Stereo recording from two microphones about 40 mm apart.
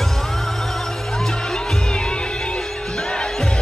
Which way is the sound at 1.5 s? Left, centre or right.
Centre.